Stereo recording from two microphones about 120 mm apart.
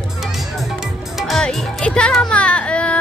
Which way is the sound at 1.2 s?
Centre (ahead or behind).